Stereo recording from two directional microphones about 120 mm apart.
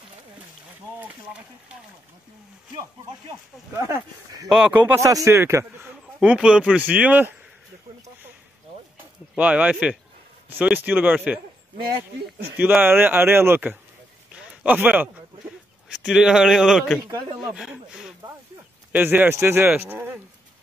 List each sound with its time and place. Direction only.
0.9 s a sound: 10° right (ahead or behind)
3.7 s a man's voice: 25° right (ahead or behind)
4.5 s speech: 5° right (ahead or behind)
5.0 s a man's voice: 25° right (ahead or behind)
6.2 s speech: 10° right (ahead or behind)
9.3 s speech: 10° right (ahead or behind)
12.5 s speech: 15° right (ahead or behind)
14.3 s a sound: 10° right (ahead or behind)
15.9 s a man's voice: 5° right (ahead or behind)
18.9 s speech: 15° right (ahead or behind)